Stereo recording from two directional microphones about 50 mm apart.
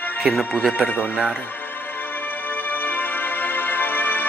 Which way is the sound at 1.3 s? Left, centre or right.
Left.